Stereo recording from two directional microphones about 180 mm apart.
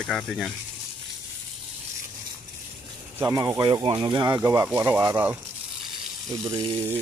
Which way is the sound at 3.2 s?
15° right (ahead or behind).